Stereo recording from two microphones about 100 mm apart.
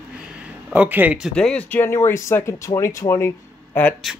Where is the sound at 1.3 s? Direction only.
10° left (ahead or behind).